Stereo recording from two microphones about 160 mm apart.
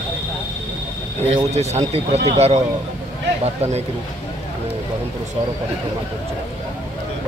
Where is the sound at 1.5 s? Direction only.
45° right (ahead or behind).